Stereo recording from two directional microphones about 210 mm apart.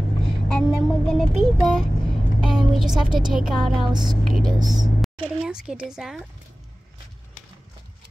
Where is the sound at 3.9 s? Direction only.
20° right (ahead or behind).